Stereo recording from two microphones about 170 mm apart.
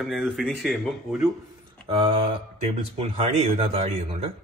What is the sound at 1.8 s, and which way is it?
Speech, 35° right (ahead or behind).